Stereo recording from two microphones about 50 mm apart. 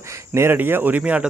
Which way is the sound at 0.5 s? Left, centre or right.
Right.